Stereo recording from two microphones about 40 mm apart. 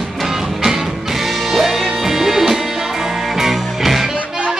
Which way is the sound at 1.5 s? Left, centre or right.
Centre.